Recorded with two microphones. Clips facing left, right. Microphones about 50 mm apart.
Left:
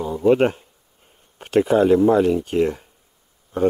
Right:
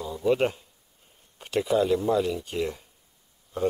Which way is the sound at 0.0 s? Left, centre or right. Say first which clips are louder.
Left 7 dB; left.